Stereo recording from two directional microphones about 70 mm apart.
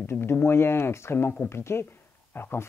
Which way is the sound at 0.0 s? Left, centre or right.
Left.